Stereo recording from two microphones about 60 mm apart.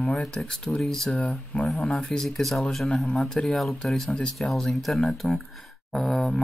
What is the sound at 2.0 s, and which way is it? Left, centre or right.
Speech, centre.